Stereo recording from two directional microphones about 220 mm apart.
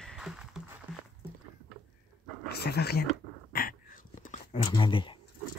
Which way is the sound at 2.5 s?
45° left (ahead or behind).